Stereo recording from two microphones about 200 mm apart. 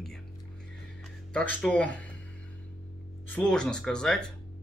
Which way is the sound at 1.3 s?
5° left (ahead or behind).